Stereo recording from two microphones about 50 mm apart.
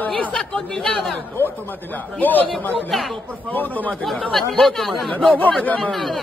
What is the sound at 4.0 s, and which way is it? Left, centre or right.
Speech, centre.